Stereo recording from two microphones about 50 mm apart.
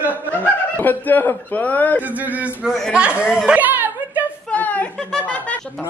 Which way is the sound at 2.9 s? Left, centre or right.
Right.